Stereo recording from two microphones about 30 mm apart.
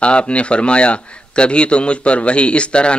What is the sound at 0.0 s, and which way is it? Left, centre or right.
A man's voice, left.